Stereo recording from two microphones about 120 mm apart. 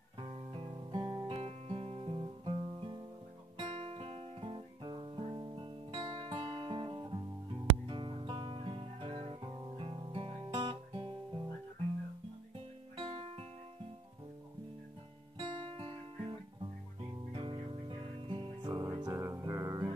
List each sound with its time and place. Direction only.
0.2 s guitar: 45° right (ahead or behind)
12.9 s music: 45° right (ahead or behind)
15.3 s guitar: 45° right (ahead or behind)
17.3 s music: 45° right (ahead or behind)
18.6 s music: 30° right (ahead or behind)
19.1 s music: 25° right (ahead or behind)